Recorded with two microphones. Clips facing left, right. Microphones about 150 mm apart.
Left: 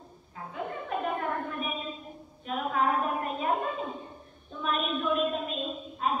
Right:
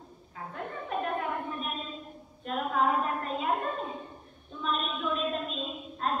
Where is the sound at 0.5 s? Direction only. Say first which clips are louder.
Left 2 dB; 5° left (ahead or behind).